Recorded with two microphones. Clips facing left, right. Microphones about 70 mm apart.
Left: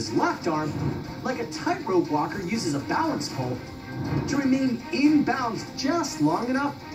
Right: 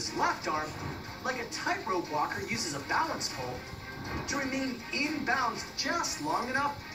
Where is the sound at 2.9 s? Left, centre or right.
Centre.